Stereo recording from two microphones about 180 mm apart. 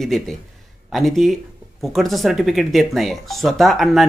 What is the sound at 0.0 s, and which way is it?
Speech, centre (ahead or behind).